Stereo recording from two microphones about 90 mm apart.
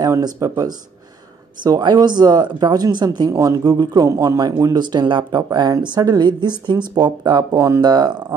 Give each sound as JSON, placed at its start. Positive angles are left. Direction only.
{"t": 0.0, "sound": "speech", "side_deg": -40}
{"t": 4.8, "sound": "speech", "side_deg": -60}
{"t": 7.5, "sound": "speech", "side_deg": -30}
{"t": 7.8, "sound": "speech", "side_deg": -50}